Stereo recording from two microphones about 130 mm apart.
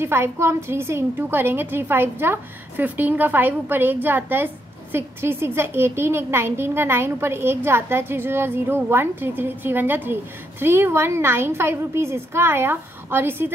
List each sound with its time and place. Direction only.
0.0 s a child's voice: 20° right (ahead or behind)